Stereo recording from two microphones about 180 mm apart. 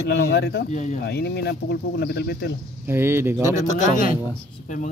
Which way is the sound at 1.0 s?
65° left (ahead or behind).